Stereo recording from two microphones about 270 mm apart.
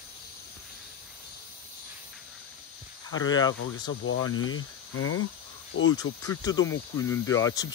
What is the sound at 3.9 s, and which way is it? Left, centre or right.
Speech, left.